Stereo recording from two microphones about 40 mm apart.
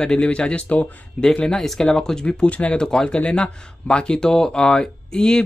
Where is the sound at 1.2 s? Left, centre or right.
Centre.